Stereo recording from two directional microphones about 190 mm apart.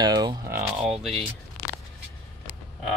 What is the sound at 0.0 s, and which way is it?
Speech, 20° right (ahead or behind).